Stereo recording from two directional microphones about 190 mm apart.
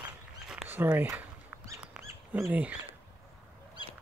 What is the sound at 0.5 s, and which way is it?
Rodents, 10° right (ahead or behind).